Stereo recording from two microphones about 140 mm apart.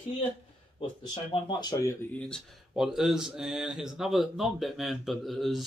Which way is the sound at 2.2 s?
Centre (ahead or behind).